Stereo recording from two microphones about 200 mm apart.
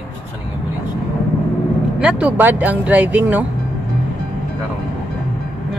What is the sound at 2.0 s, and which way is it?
Speech, 5° right (ahead or behind).